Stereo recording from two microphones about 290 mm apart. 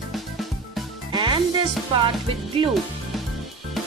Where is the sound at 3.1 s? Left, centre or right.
Centre.